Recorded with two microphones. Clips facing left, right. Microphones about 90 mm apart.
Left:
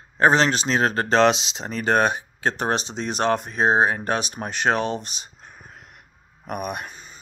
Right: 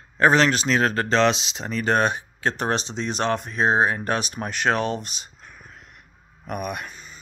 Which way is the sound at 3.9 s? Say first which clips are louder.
Even; 30° left (ahead or behind).